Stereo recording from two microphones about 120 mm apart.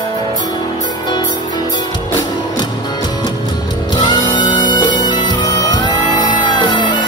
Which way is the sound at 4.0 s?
40° left (ahead or behind).